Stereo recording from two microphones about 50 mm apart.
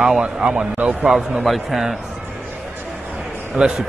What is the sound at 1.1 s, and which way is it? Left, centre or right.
Speech, centre.